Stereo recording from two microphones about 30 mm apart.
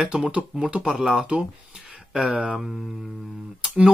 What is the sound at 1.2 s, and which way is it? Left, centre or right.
Speech, right.